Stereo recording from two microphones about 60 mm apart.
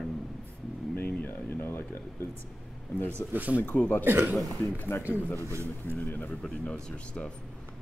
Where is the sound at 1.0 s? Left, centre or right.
Left.